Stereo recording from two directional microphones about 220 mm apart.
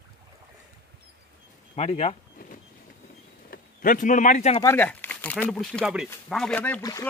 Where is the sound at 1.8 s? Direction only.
30° left (ahead or behind).